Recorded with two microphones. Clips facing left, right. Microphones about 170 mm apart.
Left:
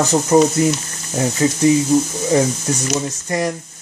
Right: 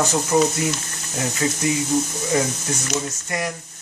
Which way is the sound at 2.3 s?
35° left (ahead or behind).